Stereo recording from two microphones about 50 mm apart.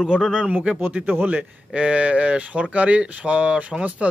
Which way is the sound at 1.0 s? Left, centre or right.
Right.